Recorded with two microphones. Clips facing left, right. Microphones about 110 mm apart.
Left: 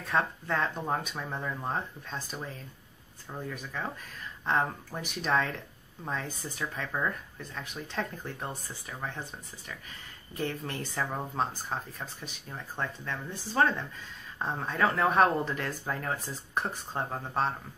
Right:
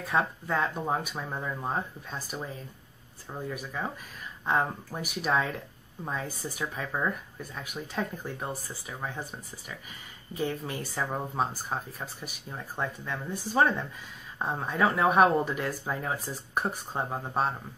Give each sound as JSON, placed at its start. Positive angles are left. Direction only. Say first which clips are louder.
{"t": 0.0, "sound": "speech", "louder": "right 1 dB", "side_deg": -5}